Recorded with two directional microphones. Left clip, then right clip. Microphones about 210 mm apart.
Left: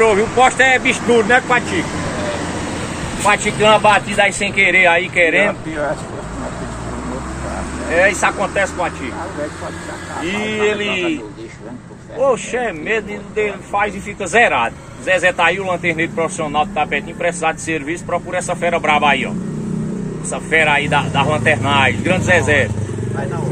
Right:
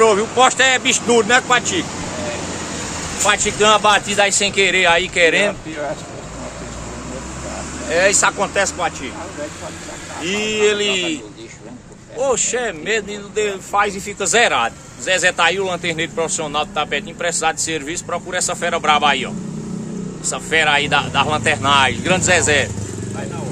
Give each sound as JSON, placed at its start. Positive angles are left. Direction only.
{"t": 0.0, "sound": "speech", "side_deg": -15}
{"t": 3.3, "sound": "speech", "side_deg": -25}
{"t": 7.9, "sound": "speech", "side_deg": -35}
{"t": 10.2, "sound": "speech", "side_deg": -35}
{"t": 12.2, "sound": "speech", "side_deg": -35}